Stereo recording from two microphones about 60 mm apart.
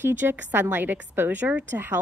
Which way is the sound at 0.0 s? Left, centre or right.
Right.